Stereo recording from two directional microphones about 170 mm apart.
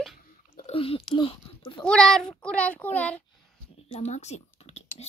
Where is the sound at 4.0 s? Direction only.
40° left (ahead or behind).